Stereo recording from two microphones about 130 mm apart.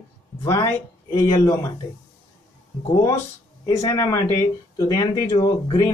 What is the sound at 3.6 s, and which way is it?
Speech, 25° left (ahead or behind).